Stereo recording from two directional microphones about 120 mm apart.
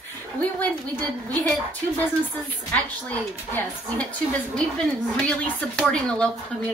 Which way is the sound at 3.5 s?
15° left (ahead or behind).